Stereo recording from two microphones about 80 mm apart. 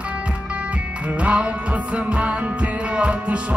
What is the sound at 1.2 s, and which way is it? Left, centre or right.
Music, centre.